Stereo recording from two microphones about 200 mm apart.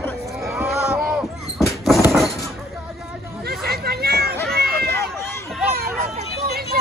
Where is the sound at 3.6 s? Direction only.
50° right (ahead or behind).